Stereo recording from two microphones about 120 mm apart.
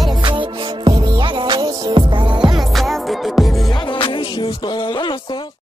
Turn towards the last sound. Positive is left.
turn(degrees=40)  # may be behind; listen again after turning